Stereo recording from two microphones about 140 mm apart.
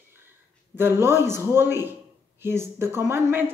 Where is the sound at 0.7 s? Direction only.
15° right (ahead or behind).